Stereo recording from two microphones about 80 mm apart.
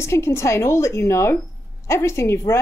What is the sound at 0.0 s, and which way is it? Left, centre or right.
A woman's voice, left.